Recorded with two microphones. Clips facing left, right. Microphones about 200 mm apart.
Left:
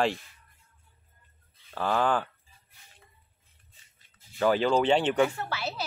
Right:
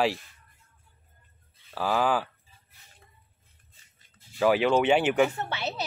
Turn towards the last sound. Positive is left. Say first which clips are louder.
# right 1 dB
turn(degrees=-20)  # may be behind; listen again after turning